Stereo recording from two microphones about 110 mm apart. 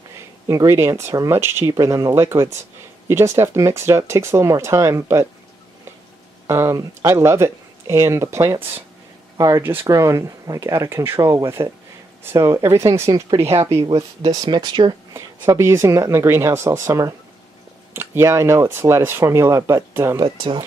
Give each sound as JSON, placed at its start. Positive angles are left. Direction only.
{"t": 0.5, "sound": "speech", "side_deg": -25}
{"t": 6.4, "sound": "speech", "side_deg": -25}
{"t": 9.8, "sound": "speech", "side_deg": -30}
{"t": 13.4, "sound": "speech", "side_deg": -70}
{"t": 14.2, "sound": "speech", "side_deg": -40}
{"t": 15.5, "sound": "speech", "side_deg": -25}
{"t": 20.2, "sound": "speech", "side_deg": -50}